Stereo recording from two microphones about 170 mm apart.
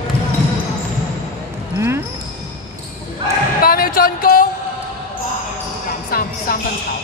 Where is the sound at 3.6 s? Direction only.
60° left (ahead or behind).